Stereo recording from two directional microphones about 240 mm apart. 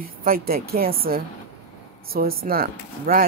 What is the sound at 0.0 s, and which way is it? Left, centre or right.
Speech, right.